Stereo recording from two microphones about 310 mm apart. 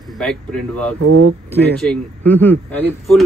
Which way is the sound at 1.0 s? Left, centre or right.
Right.